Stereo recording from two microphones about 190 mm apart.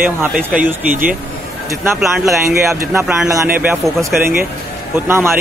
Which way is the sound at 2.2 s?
15° right (ahead or behind).